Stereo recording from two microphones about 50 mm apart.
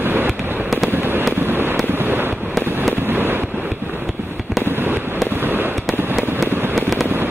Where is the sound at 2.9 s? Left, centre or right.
Right.